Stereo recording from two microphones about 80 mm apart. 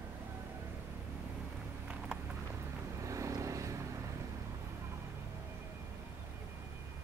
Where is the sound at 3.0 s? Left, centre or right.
Right.